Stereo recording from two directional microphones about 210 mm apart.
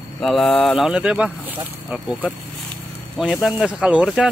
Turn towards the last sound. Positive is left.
turn(degrees=-5)  # may be behind; listen again after turning